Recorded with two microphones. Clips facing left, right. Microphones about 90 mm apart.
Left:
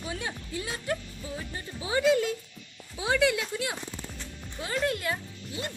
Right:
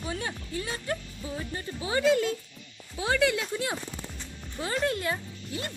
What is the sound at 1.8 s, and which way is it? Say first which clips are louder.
Speech: even; 10° left (ahead or behind).